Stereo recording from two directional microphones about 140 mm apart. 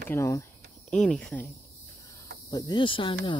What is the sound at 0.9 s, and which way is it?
Speech, 5° left (ahead or behind).